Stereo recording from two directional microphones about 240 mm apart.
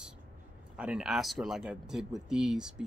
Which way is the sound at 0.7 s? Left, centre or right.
Centre.